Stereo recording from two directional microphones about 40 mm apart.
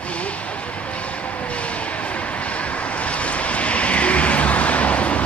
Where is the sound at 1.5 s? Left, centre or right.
Left.